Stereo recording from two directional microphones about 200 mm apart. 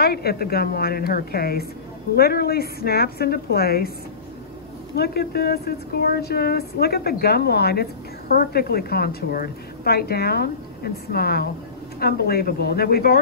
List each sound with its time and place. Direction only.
0.0 s a woman's voice: 50° left (ahead or behind)
4.9 s a woman's voice: 55° left (ahead or behind)